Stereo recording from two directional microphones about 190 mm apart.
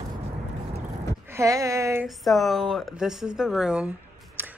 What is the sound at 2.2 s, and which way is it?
Speech, centre (ahead or behind).